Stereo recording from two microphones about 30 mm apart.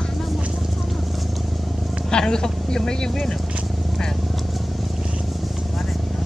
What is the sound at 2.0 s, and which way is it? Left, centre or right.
Speech, left.